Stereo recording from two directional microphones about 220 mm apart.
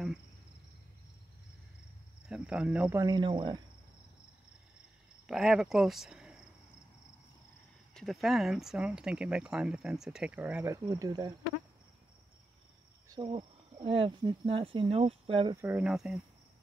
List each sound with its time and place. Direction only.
2.2 s cricket: 5° right (ahead or behind); by 3.6 s 20° right (ahead or behind)
5.2 s speech: centre (ahead or behind)
7.9 s speech: centre (ahead or behind); by 11.3 s 20° right (ahead or behind)
13.1 s speech: 20° right (ahead or behind)
15.5 s speech: 10° right (ahead or behind)